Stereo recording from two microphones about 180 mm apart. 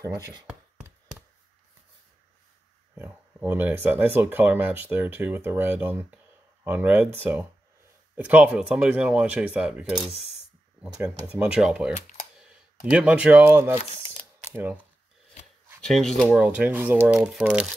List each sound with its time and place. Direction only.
0.0 s speech: 20° right (ahead or behind)
3.0 s speech: 10° right (ahead or behind)
8.2 s speech: 10° right (ahead or behind)
12.9 s speech: 5° right (ahead or behind)
15.8 s speech: 5° left (ahead or behind)